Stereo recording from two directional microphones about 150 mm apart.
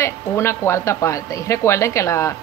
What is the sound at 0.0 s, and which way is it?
Speech, 15° left (ahead or behind).